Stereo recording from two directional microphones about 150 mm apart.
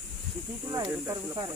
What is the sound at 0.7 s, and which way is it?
Speech, 20° right (ahead or behind).